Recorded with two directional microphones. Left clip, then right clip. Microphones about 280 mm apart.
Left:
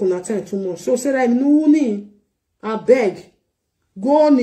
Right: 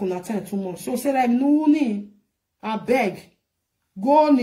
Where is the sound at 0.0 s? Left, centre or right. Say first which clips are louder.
Left 7 dB; centre.